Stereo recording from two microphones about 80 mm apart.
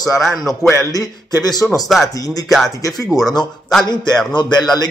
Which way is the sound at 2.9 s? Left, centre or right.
Centre.